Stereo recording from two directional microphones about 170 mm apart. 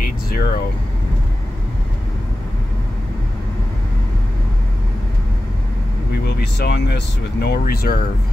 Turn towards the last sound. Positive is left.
turn(degrees=65)  # may be behind; listen again after turning